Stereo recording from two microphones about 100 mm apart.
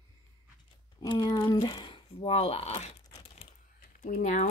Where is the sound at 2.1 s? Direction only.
80° left.